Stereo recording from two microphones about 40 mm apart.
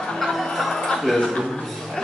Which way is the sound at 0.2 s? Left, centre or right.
Centre.